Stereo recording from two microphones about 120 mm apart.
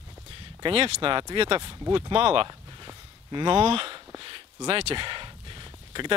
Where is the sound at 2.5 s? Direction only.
35° right (ahead or behind).